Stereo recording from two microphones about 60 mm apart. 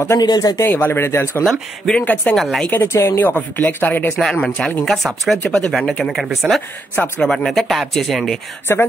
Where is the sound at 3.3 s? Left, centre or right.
Left.